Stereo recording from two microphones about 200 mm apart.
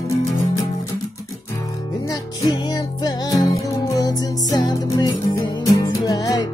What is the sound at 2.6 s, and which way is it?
Music, 20° left (ahead or behind).